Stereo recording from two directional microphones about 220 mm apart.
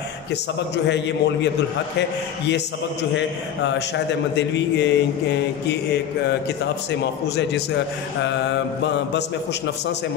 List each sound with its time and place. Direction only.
0.8 s a man's voice: 55° left (ahead or behind)
8.8 s mantra: 55° left (ahead or behind)